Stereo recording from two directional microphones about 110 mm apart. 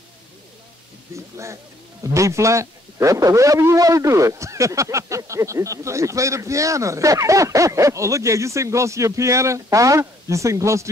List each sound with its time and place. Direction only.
1.1 s a man's voice: 25° right (ahead or behind)